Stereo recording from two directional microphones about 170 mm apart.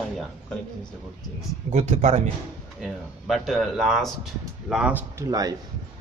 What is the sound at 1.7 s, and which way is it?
Speech, 45° right (ahead or behind).